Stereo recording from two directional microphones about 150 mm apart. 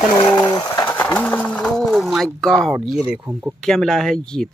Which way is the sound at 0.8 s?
15° left (ahead or behind).